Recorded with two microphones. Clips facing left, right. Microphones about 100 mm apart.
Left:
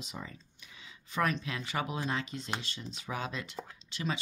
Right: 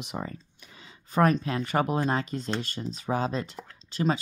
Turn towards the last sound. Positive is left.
turn(degrees=-40)  # may be behind; listen again after turning